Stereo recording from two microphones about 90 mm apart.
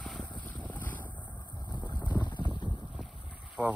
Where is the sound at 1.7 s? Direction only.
55° left (ahead or behind).